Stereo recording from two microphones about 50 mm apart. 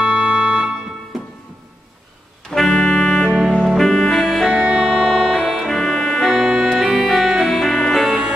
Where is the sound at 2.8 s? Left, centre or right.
Centre.